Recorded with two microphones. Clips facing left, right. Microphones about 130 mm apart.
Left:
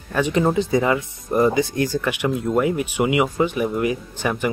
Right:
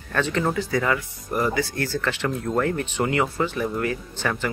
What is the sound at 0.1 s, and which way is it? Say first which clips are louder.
Speech: left 4 dB; 15° left (ahead or behind).